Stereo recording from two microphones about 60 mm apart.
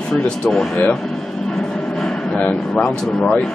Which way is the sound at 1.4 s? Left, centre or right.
Centre.